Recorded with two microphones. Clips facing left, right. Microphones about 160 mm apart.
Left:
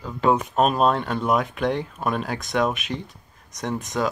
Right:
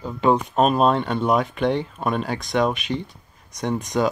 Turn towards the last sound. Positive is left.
turn(degrees=0)  # may be behind; listen again after turning